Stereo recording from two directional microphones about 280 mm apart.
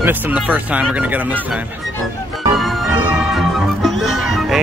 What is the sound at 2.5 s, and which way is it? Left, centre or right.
Music, centre.